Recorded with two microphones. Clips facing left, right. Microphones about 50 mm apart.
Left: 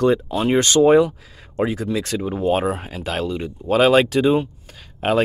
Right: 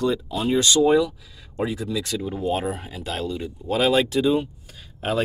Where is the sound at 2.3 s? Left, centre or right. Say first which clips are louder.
Left 6 dB; left.